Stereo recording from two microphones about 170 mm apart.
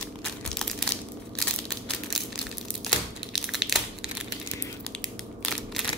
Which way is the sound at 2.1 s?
Centre (ahead or behind).